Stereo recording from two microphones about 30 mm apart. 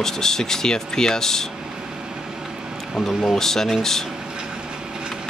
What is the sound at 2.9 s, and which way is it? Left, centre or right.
Speech, centre.